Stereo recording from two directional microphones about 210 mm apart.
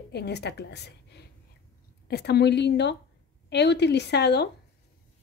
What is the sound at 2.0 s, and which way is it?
A woman's voice, 50° left (ahead or behind).